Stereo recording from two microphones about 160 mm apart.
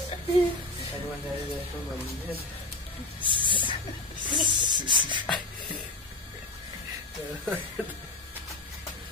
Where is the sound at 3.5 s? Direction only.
30° left (ahead or behind).